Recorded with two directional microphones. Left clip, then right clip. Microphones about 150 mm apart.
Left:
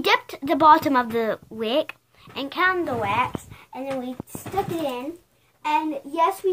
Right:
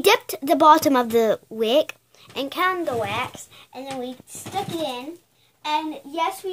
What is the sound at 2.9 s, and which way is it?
Speech, 50° right (ahead or behind).